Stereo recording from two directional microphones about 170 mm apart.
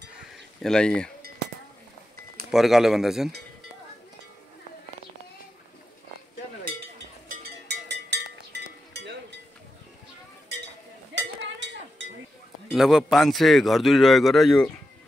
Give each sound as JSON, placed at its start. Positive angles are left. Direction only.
{"t": 0.6, "sound": "a man's voice", "side_deg": 5}
{"t": 2.5, "sound": "a man's voice", "side_deg": 0}
{"t": 7.6, "sound": "a sound", "side_deg": -85}
{"t": 12.7, "sound": "a man's voice", "side_deg": 0}